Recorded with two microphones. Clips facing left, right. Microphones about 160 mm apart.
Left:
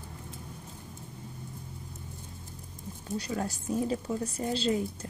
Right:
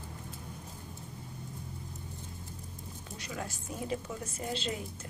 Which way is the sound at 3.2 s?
35° left (ahead or behind).